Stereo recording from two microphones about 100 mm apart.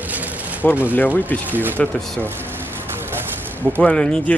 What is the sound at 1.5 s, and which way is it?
Speech, 20° right (ahead or behind).